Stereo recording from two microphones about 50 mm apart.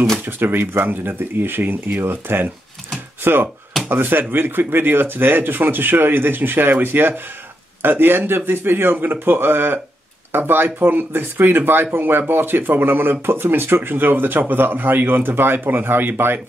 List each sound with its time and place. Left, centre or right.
0.4 s speech: right